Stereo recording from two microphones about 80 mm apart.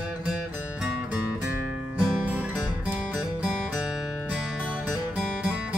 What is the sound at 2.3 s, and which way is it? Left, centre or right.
Music, centre.